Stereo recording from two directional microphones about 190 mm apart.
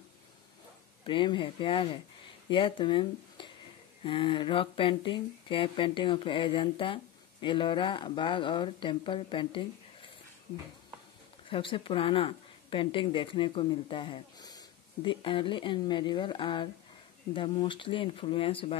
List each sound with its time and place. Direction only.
1.0 s speech: 25° left (ahead or behind)
11.4 s speech: 30° left (ahead or behind)